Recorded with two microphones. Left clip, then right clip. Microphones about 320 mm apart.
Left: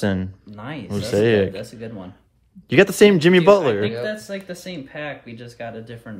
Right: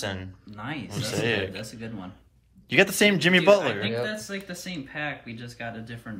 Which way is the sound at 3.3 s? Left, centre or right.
Left.